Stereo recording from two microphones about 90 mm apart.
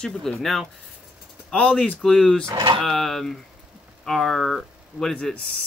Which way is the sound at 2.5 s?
60° right (ahead or behind).